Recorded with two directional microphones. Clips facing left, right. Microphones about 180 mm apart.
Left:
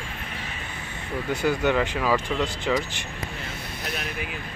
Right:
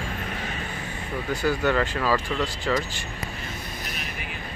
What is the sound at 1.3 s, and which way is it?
Speech, 20° left (ahead or behind).